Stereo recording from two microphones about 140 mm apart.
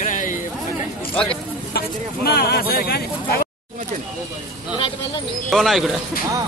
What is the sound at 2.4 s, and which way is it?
Speech, 90° left.